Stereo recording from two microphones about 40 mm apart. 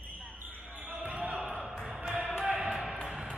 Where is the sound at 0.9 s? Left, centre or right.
Right.